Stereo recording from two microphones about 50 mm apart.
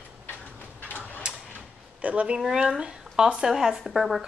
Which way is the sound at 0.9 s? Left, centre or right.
Left.